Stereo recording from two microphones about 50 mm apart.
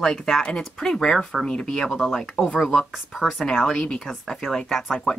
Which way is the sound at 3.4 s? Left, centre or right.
Centre.